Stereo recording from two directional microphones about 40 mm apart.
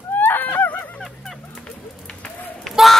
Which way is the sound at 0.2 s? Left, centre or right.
Left.